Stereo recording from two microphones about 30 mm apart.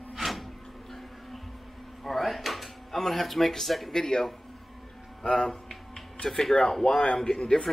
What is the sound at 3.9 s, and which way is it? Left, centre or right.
Speech, centre.